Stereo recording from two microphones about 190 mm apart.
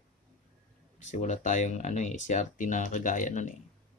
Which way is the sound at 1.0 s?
40° left (ahead or behind).